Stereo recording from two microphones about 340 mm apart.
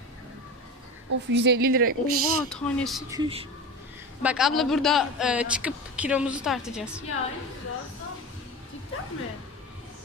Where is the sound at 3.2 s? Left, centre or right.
Centre.